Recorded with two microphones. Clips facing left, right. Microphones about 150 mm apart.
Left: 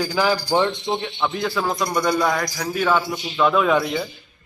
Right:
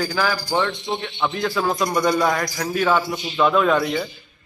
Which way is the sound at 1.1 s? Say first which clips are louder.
Right 1 dB; centre (ahead or behind).